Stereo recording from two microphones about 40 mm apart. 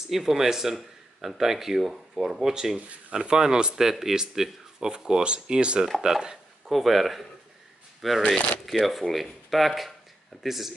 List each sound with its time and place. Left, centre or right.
0.1 s speech: centre
6.7 s speech: centre